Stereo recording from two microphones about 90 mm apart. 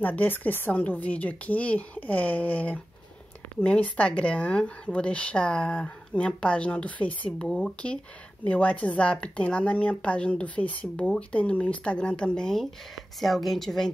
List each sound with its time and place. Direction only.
0.0 s speech: 20° left (ahead or behind)